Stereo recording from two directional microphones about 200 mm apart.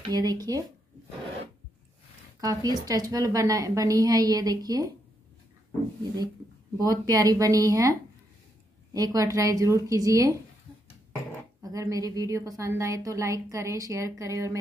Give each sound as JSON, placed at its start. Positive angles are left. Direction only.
{"t": 0.1, "sound": "speech", "side_deg": -20}
{"t": 2.4, "sound": "a woman's voice", "side_deg": -20}
{"t": 6.8, "sound": "a woman's voice", "side_deg": -20}
{"t": 11.6, "sound": "a woman's voice", "side_deg": -15}